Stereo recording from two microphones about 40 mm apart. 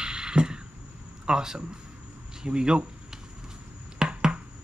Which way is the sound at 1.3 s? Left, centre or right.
Centre.